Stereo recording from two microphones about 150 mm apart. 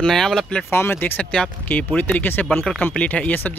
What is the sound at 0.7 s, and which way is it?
Speech, 15° left (ahead or behind).